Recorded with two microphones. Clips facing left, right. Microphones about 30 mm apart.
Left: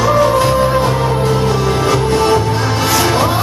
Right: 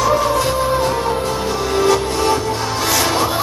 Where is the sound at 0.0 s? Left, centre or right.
Centre.